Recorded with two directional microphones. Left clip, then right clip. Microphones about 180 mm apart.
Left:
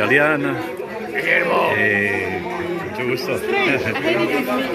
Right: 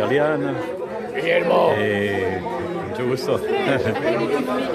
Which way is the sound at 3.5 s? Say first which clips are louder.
Left 5 dB; 40° left (ahead or behind).